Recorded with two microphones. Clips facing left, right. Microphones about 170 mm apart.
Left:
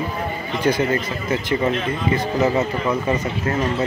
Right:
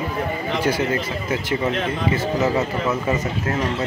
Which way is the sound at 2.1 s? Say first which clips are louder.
Left 2 dB; 5° right (ahead or behind).